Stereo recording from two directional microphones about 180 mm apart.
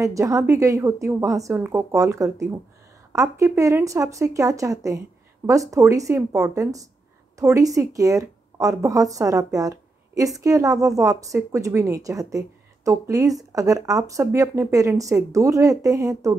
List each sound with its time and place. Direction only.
0.0 s a woman's voice: 15° right (ahead or behind)